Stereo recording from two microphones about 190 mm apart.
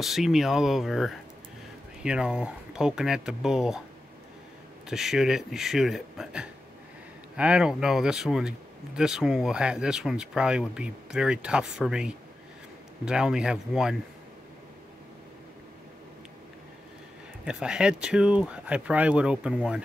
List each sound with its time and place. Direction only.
0.0 s speech: centre (ahead or behind)
4.8 s speech: centre (ahead or behind)
17.5 s speech: 5° right (ahead or behind)